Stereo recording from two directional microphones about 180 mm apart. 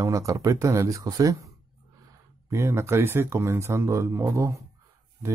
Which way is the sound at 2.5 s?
15° right (ahead or behind).